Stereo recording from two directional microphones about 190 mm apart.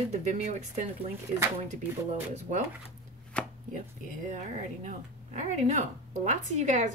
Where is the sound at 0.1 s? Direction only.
40° right (ahead or behind).